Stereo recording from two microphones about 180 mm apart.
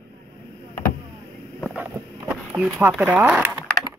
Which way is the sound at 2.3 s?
5° right (ahead or behind).